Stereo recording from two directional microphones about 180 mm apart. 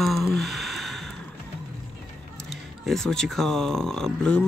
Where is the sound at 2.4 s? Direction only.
Centre (ahead or behind).